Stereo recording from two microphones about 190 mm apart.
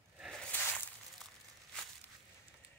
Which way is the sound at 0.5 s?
10° left (ahead or behind).